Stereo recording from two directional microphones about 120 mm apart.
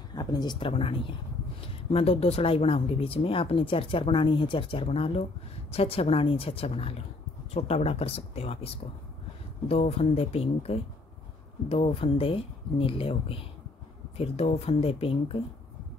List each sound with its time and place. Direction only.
0.1 s speech: 35° left (ahead or behind); by 15.3 s 55° left (ahead or behind)